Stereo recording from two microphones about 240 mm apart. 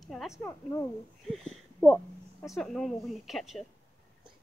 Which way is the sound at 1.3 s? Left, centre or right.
Centre.